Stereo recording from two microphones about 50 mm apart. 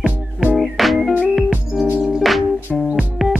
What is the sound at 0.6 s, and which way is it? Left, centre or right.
Music, centre.